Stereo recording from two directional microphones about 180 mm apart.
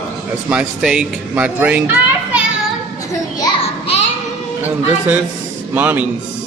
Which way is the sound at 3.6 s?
35° left (ahead or behind).